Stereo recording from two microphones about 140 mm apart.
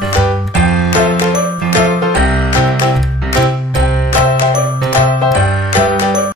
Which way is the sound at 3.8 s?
Centre (ahead or behind).